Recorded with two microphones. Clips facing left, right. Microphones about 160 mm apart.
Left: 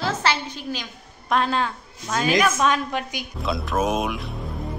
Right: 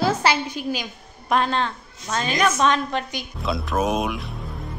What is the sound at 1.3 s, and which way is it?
A woman's voice, 5° left (ahead or behind).